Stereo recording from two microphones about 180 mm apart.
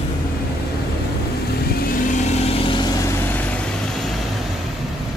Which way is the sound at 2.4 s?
30° left (ahead or behind).